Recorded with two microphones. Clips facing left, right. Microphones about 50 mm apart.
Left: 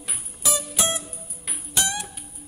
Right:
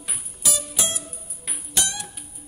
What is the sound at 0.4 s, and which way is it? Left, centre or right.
Music, left.